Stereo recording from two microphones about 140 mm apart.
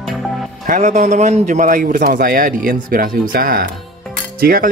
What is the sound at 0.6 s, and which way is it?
A man's voice, 65° right (ahead or behind).